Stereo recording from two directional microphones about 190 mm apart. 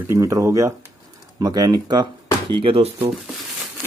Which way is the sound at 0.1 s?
15° right (ahead or behind).